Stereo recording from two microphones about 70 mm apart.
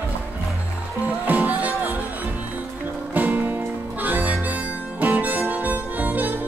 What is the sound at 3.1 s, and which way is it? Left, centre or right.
Music, right.